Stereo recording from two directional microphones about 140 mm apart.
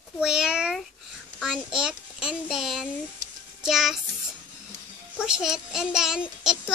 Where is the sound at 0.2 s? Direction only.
5° right (ahead or behind).